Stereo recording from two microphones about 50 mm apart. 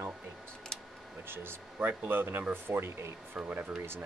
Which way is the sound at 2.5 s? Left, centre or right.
Right.